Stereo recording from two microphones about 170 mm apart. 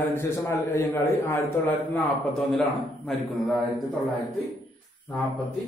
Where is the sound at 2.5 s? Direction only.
Centre (ahead or behind).